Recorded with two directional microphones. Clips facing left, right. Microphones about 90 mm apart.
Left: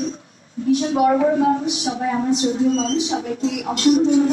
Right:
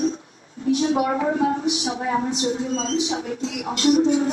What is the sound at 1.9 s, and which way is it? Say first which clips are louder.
Speech: left 6 dB; 35° right (ahead or behind).